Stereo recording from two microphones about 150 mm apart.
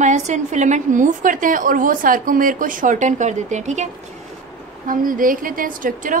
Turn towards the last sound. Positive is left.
turn(degrees=-65)  # may be behind; listen again after turning